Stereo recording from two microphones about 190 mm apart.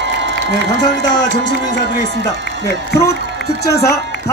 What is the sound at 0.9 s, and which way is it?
Run, 70° left (ahead or behind).